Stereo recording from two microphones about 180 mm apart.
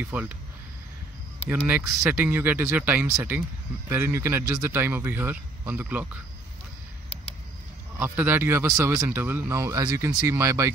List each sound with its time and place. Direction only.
0.0 s speech: 5° right (ahead or behind)
1.5 s speech: 10° right (ahead or behind)
8.0 s speech: 10° right (ahead or behind)